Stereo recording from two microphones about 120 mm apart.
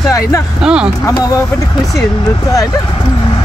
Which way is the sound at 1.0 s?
30° left (ahead or behind).